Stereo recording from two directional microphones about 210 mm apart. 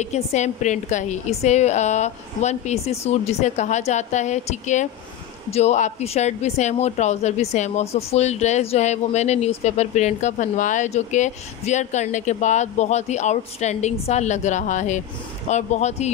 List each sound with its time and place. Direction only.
0.0 s speech: 35° left (ahead or behind)